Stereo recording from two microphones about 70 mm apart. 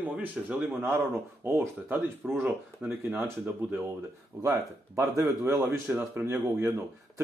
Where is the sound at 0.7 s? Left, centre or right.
Right.